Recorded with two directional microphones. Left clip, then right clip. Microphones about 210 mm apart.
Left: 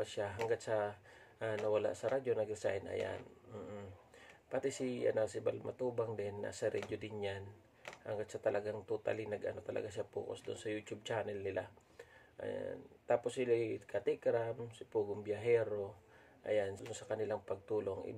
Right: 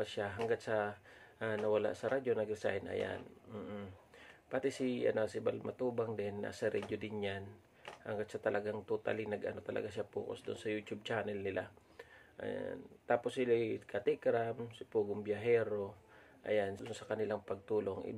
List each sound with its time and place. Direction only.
0.0 s speech: 10° right (ahead or behind)